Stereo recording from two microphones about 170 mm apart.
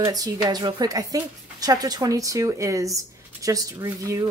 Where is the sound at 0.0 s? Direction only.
20° right (ahead or behind).